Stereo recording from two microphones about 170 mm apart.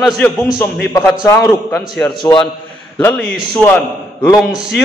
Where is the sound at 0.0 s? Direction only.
Centre (ahead or behind).